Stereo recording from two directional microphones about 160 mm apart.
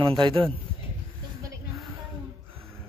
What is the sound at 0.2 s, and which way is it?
Speech, 35° right (ahead or behind).